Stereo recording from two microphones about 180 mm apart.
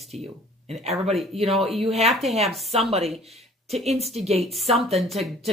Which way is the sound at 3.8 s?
35° right (ahead or behind).